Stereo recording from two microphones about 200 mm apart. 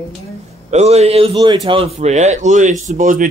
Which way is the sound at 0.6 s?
35° right (ahead or behind).